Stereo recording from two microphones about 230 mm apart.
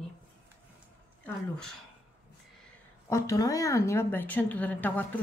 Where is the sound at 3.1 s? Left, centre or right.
Centre.